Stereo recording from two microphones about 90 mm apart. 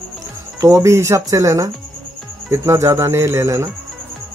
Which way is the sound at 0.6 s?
40° right (ahead or behind).